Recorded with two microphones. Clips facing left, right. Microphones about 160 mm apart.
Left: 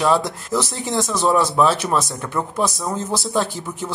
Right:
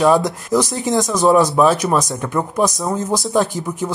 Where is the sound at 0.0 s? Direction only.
15° right (ahead or behind).